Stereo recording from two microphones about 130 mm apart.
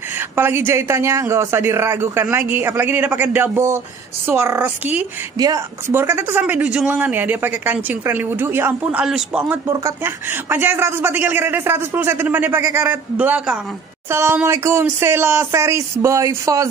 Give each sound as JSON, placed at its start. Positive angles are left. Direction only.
{"t": 0.4, "sound": "speech", "side_deg": -20}
{"t": 9.0, "sound": "a man's voice", "side_deg": -5}
{"t": 9.4, "sound": "speech", "side_deg": -20}